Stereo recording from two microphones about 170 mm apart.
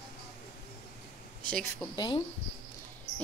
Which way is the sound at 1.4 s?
5° left (ahead or behind).